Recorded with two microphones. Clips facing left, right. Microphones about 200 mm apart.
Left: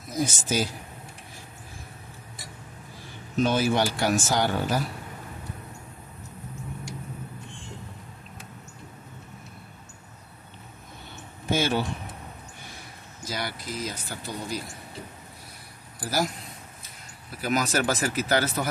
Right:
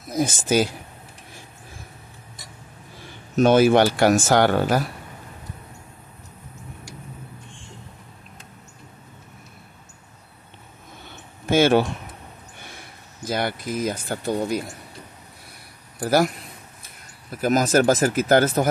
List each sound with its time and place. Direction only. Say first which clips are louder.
0.2 s speech: right 6 dB; 55° right (ahead or behind)
3.4 s speech: right 9 dB; 65° right (ahead or behind)
11.5 s speech: right 9 dB; 75° right (ahead or behind)
13.2 s speech: right 8 dB; 55° right (ahead or behind)
16.0 s a man's voice: right 8 dB; 60° right (ahead or behind)
17.3 s speech: right 7 dB; 45° right (ahead or behind)